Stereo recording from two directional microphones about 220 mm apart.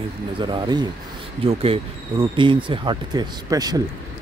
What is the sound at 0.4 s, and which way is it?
Speech, 20° right (ahead or behind).